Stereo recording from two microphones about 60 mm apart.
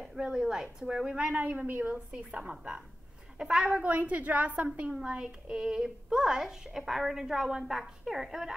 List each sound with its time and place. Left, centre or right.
0.0 s a woman's voice: centre
1.3 s a woman's voice: right; by 3.8 s centre
3.8 s a woman's voice: right; by 8.5 s centre